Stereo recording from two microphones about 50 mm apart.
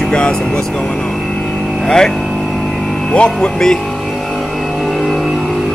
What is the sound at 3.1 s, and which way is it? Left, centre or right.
Speech, centre.